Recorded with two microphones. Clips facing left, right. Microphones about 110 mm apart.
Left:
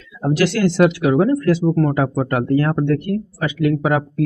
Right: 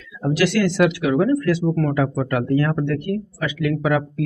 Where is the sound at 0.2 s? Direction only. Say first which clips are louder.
Left 2 dB; 30° left (ahead or behind).